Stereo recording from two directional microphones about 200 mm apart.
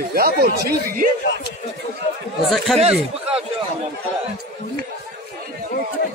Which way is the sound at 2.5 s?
Centre (ahead or behind).